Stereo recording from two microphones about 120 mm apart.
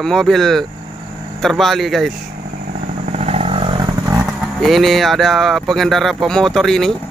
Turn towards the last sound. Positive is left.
turn(degrees=0)  # may be behind; listen again after turning